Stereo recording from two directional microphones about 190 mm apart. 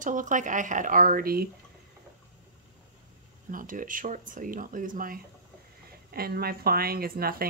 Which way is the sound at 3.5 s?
45° right (ahead or behind).